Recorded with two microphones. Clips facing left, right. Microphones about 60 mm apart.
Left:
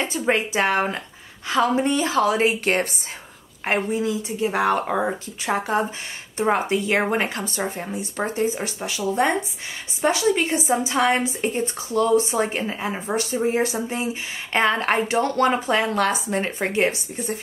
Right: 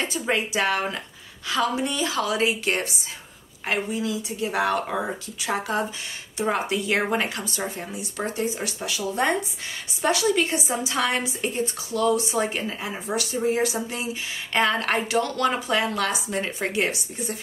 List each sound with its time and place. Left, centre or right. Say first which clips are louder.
0.0 s a woman's voice: left 3 dB; left